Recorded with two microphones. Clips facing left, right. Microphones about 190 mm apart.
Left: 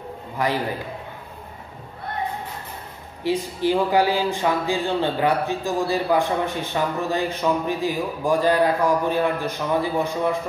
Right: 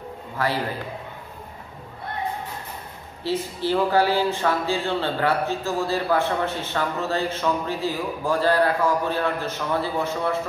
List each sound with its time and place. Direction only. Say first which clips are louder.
0.4 s speech: left 2 dB; 15° left (ahead or behind)
3.3 s speech: left 3 dB; 15° left (ahead or behind)